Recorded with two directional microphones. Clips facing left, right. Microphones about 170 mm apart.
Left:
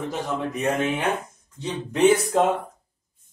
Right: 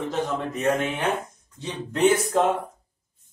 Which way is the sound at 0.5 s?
15° left (ahead or behind).